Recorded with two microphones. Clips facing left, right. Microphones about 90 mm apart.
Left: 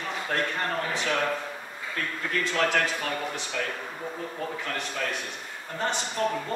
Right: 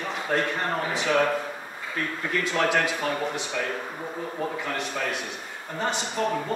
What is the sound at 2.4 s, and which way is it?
Speech, 15° right (ahead or behind).